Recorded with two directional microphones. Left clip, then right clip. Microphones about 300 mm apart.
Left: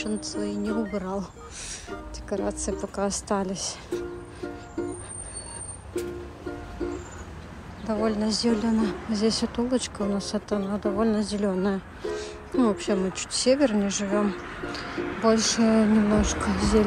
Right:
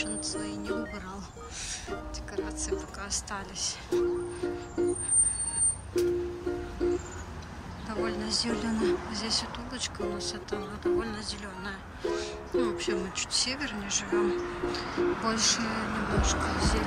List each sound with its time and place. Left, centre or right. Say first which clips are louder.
0.0 s speech: left 3 dB; centre
4.8 s music: right 3 dB; centre
6.8 s music: right 3 dB; centre
7.9 s speech: left 5 dB; centre